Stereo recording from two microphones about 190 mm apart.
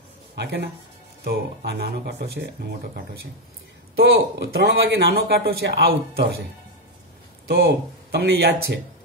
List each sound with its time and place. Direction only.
0.4 s speech: 65° right (ahead or behind)
7.4 s speech: 60° right (ahead or behind)